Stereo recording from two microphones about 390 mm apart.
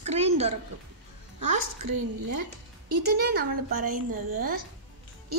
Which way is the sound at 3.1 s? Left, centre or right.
Right.